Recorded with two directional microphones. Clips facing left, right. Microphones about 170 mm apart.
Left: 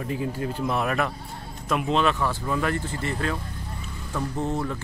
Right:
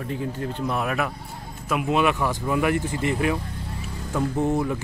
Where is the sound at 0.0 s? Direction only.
5° left (ahead or behind).